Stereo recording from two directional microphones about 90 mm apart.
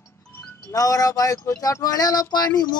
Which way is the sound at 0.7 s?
40° left (ahead or behind).